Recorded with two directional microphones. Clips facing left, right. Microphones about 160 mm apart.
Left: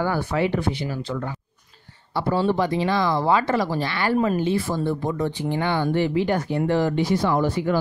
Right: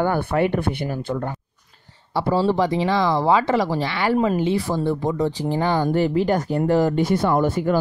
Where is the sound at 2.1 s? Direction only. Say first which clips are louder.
Right 2 dB; 30° right (ahead or behind).